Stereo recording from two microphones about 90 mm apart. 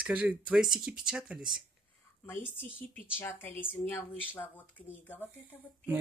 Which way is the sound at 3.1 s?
20° left (ahead or behind).